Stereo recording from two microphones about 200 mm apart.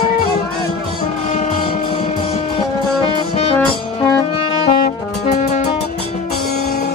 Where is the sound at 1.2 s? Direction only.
35° left (ahead or behind).